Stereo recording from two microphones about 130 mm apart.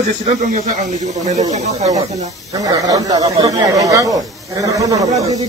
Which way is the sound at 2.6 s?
30° right (ahead or behind).